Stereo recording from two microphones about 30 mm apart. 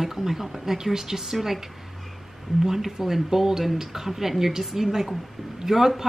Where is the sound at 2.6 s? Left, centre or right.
Centre.